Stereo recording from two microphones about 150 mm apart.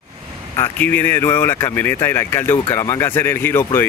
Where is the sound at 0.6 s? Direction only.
10° left (ahead or behind).